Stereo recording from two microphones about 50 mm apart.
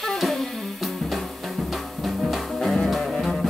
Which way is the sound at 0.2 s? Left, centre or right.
Centre.